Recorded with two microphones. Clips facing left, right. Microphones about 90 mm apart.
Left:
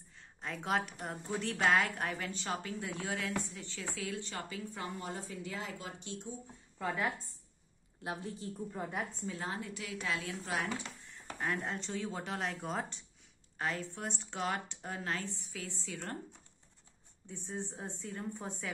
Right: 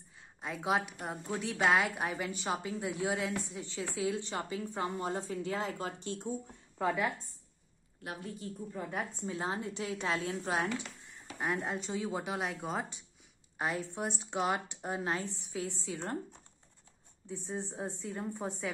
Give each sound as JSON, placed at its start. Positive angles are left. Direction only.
{"t": 0.4, "sound": "a woman's voice", "side_deg": -10}
{"t": 5.5, "sound": "speech", "side_deg": -50}
{"t": 8.0, "sound": "speech", "side_deg": 25}
{"t": 9.2, "sound": "a woman's voice", "side_deg": -25}
{"t": 11.3, "sound": "speech", "side_deg": -15}
{"t": 13.6, "sound": "a woman's voice", "side_deg": -15}
{"t": 17.3, "sound": "speech", "side_deg": -15}